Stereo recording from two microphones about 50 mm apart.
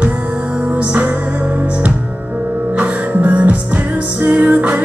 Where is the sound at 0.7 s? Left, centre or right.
Right.